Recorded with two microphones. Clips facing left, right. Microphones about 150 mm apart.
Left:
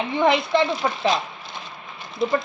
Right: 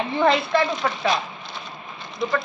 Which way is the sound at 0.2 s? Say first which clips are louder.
Left 1 dB; 15° left (ahead or behind).